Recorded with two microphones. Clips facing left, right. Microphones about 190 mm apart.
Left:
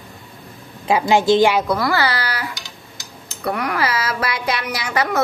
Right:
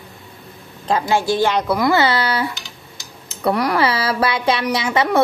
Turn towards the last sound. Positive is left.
turn(degrees=-25)  # may be behind; listen again after turning